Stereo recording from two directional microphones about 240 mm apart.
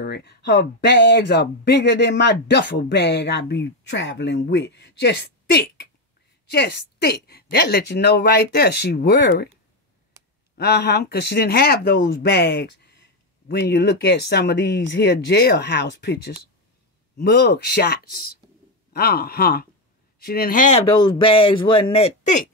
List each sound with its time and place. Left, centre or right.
0.0 s speech: left
10.6 s speech: left
20.9 s speech: centre